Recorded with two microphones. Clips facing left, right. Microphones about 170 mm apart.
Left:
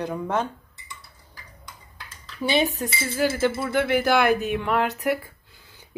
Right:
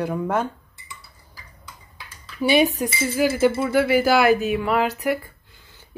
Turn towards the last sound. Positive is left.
turn(degrees=0)  # may be behind; listen again after turning